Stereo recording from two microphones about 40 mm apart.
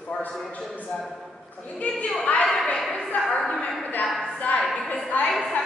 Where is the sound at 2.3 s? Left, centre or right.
Left.